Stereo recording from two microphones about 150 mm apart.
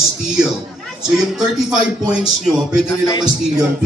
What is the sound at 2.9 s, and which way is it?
Music, 25° left (ahead or behind).